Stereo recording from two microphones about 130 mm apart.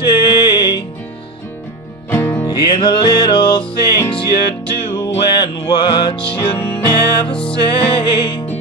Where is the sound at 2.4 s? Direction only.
35° left (ahead or behind).